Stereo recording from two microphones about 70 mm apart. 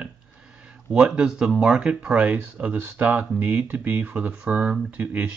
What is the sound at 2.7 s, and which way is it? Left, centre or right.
Speech, right.